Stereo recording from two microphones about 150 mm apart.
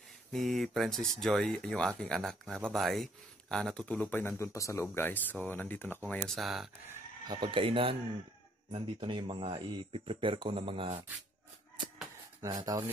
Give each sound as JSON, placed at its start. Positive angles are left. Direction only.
{"t": 0.3, "sound": "speech", "side_deg": 0}
{"t": 7.2, "sound": "speech", "side_deg": -30}
{"t": 12.4, "sound": "speech", "side_deg": -25}